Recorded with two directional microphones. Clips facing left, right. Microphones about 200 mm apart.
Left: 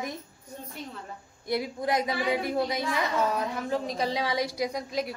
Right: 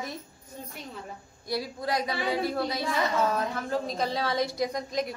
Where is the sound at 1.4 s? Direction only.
20° left (ahead or behind).